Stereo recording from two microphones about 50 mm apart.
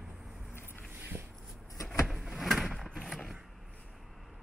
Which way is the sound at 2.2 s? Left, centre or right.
Centre.